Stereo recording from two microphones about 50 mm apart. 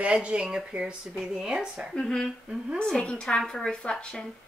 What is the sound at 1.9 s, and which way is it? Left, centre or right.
A woman's voice, centre.